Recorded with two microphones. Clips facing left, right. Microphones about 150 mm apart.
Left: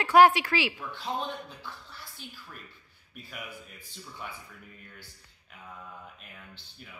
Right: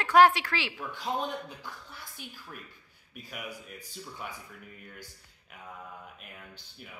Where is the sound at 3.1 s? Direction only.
5° right (ahead or behind).